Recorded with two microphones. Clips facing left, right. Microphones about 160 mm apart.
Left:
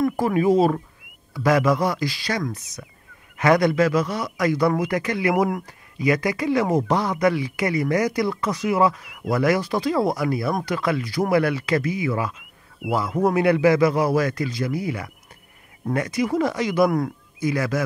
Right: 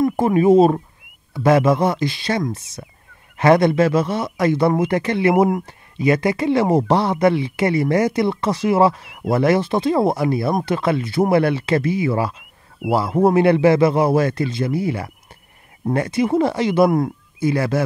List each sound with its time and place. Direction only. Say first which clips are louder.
0.2 s speech: right 6 dB; 25° right (ahead or behind)
12.8 s a man's voice: right 5 dB; 50° right (ahead or behind)
13.2 s speech: right 4 dB; 30° right (ahead or behind)